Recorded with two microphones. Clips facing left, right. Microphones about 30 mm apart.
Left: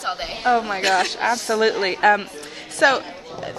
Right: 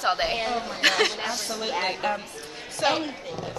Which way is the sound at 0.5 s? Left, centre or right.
Left.